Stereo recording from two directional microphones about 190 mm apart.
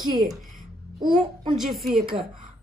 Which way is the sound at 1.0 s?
25° right (ahead or behind).